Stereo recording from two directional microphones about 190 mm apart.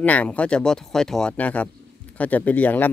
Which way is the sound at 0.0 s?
10° left (ahead or behind).